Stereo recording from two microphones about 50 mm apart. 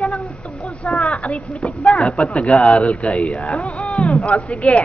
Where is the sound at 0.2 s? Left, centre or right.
Centre.